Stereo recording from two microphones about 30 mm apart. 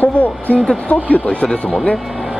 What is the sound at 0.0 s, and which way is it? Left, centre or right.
Speech, left.